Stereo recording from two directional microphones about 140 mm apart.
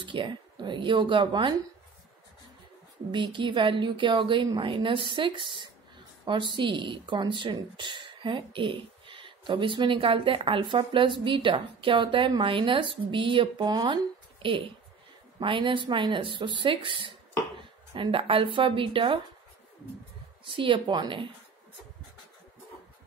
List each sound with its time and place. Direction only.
0.0 s speech: 35° right (ahead or behind)
3.1 s a woman's voice: 35° right (ahead or behind)
20.4 s speech: 35° right (ahead or behind)